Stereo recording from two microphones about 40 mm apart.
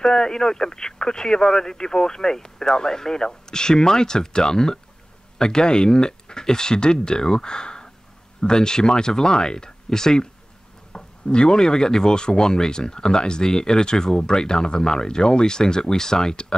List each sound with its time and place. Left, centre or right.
0.0 s speech: centre